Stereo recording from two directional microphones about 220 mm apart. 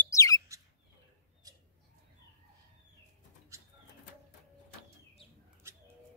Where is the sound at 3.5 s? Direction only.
15° right (ahead or behind).